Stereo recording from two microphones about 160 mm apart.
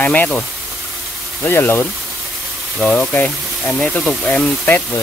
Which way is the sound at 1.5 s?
15° left (ahead or behind).